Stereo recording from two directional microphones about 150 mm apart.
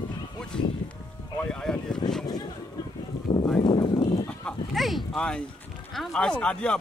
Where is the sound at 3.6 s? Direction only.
30° left (ahead or behind).